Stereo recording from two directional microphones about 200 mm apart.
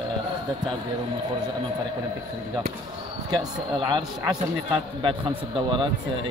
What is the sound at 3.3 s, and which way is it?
Speech, 20° right (ahead or behind).